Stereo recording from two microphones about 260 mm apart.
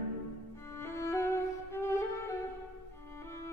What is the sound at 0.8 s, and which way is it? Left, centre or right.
Music, centre.